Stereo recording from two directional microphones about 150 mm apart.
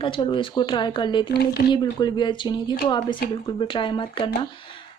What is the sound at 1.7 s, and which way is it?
A woman's voice, 30° left (ahead or behind).